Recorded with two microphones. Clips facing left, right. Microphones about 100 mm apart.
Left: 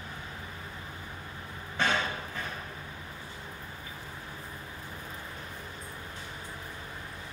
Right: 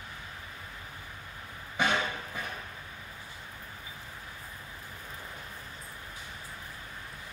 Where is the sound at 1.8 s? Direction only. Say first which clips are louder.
Even; 10° right (ahead or behind).